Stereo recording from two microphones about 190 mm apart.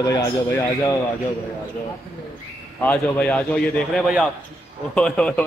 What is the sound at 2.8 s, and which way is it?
A man's voice, 5° left (ahead or behind).